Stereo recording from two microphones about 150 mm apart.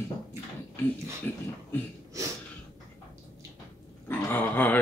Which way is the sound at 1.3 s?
15° left (ahead or behind).